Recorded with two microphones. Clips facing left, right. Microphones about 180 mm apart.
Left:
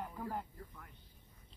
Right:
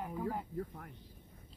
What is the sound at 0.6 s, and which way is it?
Speech, 55° right (ahead or behind).